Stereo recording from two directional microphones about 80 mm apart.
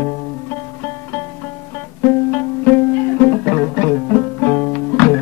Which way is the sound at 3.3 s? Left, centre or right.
Centre.